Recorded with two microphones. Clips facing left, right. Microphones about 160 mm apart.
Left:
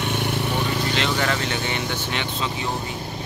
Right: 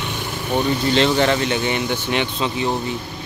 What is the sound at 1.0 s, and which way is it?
Speech, 30° right (ahead or behind).